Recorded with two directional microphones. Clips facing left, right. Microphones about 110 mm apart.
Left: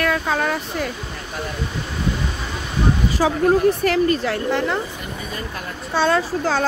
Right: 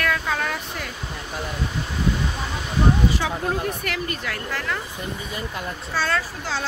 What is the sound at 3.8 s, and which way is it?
Speech, 35° left (ahead or behind).